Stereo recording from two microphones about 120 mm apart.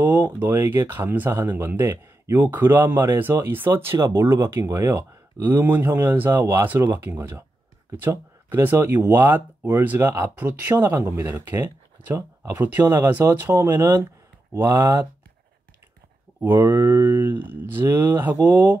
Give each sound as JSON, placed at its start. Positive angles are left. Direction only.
{"t": 0.0, "sound": "speech", "side_deg": -15}
{"t": 16.3, "sound": "speech", "side_deg": -20}